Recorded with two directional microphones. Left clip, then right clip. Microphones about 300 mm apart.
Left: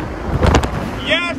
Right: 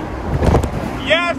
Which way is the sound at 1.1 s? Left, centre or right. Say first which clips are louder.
Right 2 dB; centre.